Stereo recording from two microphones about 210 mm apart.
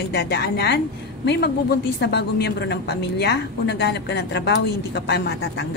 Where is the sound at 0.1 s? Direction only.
55° left (ahead or behind).